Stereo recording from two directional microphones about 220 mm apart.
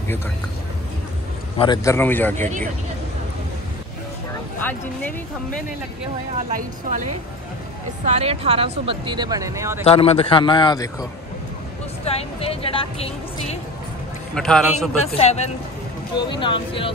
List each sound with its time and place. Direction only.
1.6 s speech: 15° left (ahead or behind)
4.6 s speech: 5° left (ahead or behind)
6.5 s a woman's voice: 35° right (ahead or behind)
8.1 s speech: 30° right (ahead or behind)
9.8 s speech: 25° left (ahead or behind)
14.3 s a man's voice: 5° left (ahead or behind)
15.1 s speech: 30° left (ahead or behind)